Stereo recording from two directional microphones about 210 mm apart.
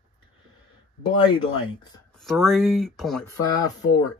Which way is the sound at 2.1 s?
Centre (ahead or behind).